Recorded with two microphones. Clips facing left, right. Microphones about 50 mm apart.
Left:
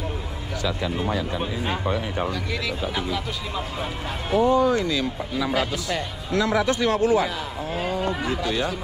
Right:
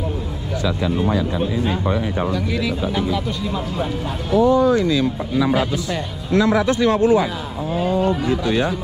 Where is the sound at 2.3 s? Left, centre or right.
Centre.